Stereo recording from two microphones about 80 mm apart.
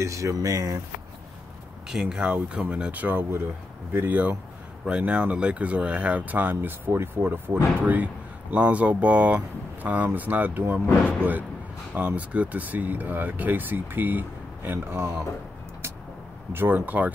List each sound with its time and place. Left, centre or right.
0.0 s speech: right
1.9 s speech: centre
11.9 s speech: right
16.5 s speech: right